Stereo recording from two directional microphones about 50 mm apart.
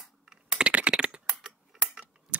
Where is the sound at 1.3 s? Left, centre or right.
Centre.